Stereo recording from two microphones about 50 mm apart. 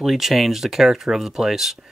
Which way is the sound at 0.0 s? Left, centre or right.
Centre.